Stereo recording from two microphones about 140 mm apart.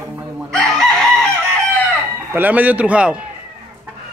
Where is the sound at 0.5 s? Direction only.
Centre (ahead or behind).